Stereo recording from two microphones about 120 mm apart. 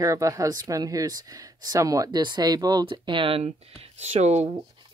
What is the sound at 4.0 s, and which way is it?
Speech, 70° right (ahead or behind).